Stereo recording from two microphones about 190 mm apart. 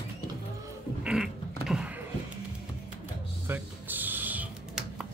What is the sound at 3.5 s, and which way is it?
Typing, 10° right (ahead or behind).